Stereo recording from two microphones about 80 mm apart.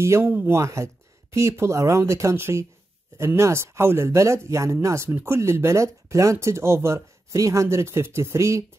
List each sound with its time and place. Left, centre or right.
0.0 s speech: right
0.3 s speech: right
0.6 s speech: right